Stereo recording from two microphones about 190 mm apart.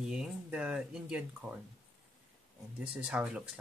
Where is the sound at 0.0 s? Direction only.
5° right (ahead or behind).